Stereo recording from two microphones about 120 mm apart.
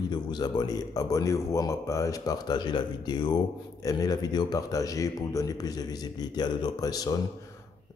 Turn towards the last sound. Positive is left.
turn(degrees=30)  # may be behind; listen again after turning